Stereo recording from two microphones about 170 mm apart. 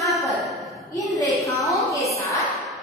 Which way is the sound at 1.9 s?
20° left (ahead or behind).